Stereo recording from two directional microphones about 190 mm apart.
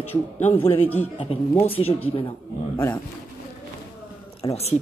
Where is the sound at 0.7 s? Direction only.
10° left (ahead or behind).